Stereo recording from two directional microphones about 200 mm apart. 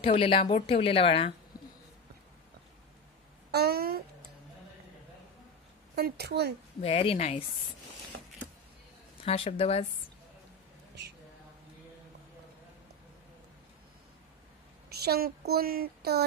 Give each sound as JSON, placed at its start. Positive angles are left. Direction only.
{"t": 0.0, "sound": "a woman's voice", "side_deg": 25}
{"t": 3.5, "sound": "a sound", "side_deg": -50}
{"t": 5.9, "sound": "a woman's voice", "side_deg": -50}
{"t": 6.8, "sound": "a woman's voice", "side_deg": 30}
{"t": 9.2, "sound": "a woman's voice", "side_deg": 30}
{"t": 14.9, "sound": "speech", "side_deg": -50}